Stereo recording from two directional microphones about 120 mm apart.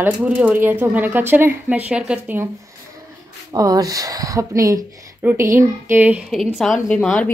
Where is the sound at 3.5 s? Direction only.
30° right (ahead or behind); by 6.2 s 15° right (ahead or behind).